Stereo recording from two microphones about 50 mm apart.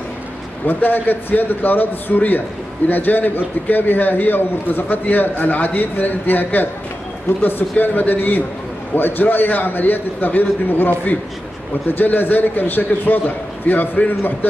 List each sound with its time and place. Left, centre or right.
0.7 s a man's voice: left